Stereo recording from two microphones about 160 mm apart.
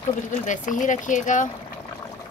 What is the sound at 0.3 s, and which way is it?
Speech, 50° left (ahead or behind).